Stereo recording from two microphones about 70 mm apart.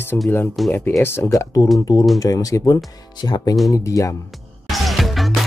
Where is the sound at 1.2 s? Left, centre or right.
Left.